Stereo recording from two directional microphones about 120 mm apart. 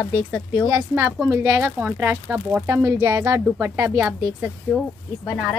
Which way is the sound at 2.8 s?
25° right (ahead or behind).